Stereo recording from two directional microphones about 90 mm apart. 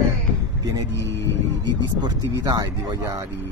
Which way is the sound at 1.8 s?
50° right (ahead or behind).